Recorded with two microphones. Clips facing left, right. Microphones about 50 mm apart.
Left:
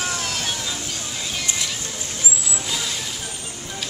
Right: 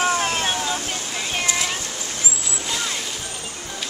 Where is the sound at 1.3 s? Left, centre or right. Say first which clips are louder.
Right 5 dB; right.